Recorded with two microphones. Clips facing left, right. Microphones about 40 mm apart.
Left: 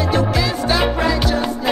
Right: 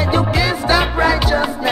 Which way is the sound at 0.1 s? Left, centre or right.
Centre.